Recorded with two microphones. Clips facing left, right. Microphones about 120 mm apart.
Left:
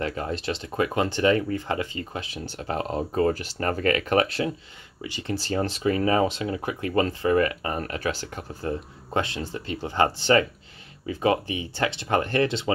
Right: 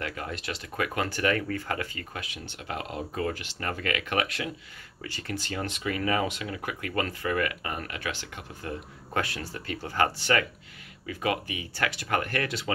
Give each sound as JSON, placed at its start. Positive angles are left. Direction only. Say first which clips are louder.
{"t": 0.0, "sound": "speech", "louder": "left 6 dB", "side_deg": 30}
{"t": 5.0, "sound": "speech", "louder": "left 4 dB", "side_deg": 15}
{"t": 5.3, "sound": "speech", "louder": "left 7 dB", "side_deg": 30}